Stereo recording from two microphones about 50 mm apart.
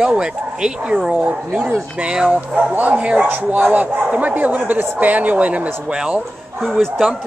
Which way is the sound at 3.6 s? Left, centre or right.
Right.